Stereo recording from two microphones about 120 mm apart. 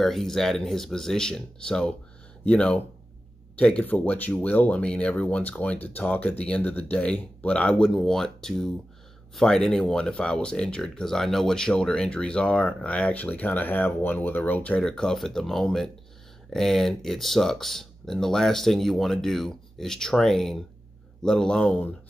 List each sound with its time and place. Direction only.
0.0 s speech: 5° left (ahead or behind)